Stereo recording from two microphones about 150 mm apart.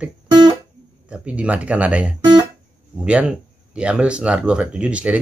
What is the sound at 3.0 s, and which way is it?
Speech, 5° right (ahead or behind).